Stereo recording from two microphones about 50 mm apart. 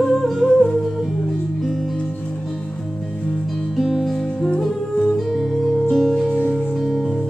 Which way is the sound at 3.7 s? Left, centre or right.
Centre.